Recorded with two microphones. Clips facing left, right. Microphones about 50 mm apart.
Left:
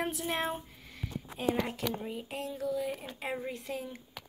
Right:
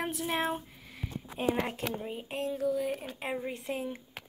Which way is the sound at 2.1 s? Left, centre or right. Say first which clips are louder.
Right 3 dB; right.